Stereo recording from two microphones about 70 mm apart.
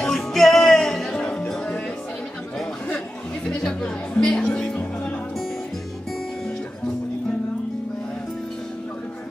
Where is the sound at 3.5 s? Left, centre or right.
Centre.